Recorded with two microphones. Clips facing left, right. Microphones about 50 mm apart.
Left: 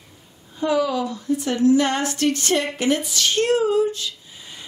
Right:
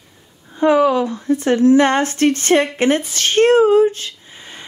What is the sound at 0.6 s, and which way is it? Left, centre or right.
A woman's voice, right.